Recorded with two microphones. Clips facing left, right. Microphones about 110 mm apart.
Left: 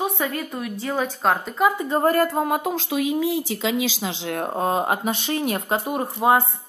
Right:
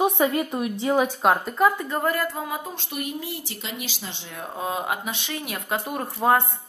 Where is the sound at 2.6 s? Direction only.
90° left.